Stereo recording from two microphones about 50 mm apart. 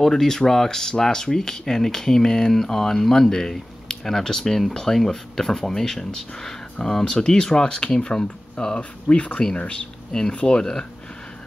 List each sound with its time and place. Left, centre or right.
0.0 s speech: centre